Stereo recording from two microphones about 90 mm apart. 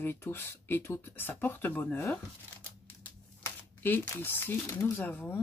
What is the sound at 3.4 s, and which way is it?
Speech, 25° left (ahead or behind).